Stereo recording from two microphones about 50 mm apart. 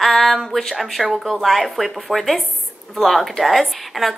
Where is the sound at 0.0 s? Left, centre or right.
Centre.